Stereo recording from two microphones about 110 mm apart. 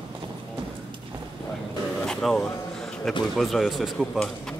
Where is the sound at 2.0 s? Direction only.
5° left (ahead or behind).